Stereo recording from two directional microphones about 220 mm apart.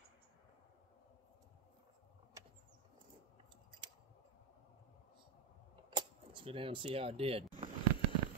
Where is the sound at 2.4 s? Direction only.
15° right (ahead or behind).